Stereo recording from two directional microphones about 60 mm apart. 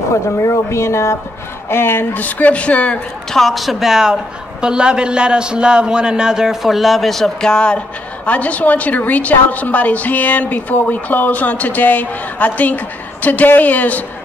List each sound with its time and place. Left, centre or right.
0.1 s speech: left
1.7 s a woman's voice: left
3.3 s a woman's voice: centre; by 14.0 s left